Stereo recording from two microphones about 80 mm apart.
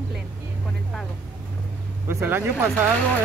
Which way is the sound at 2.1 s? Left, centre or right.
Right.